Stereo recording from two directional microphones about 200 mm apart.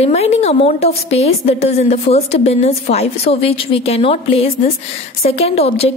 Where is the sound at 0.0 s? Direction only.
30° left (ahead or behind).